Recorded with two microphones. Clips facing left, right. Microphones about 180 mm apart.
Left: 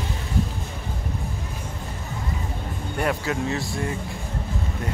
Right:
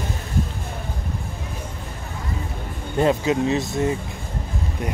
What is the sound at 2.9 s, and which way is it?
Speech, 20° right (ahead or behind).